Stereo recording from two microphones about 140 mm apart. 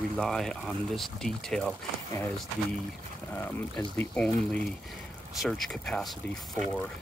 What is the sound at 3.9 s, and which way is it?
Speech, 10° left (ahead or behind).